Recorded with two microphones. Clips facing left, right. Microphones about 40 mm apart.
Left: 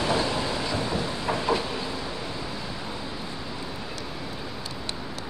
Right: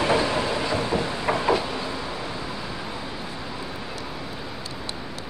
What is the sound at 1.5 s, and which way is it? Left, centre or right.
Train, centre.